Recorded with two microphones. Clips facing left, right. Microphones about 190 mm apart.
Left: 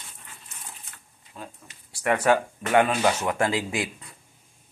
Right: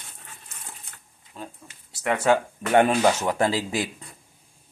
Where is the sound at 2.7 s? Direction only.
35° right (ahead or behind).